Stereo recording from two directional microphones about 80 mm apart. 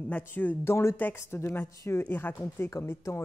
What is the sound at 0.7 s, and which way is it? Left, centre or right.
Speech, left.